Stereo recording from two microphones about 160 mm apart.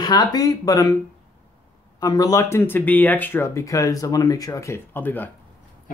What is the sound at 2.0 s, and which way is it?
Speech, 25° left (ahead or behind).